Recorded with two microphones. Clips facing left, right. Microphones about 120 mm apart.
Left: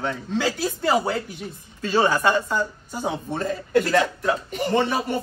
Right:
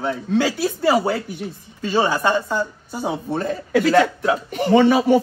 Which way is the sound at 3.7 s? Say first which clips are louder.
Right 4 dB; 90° right.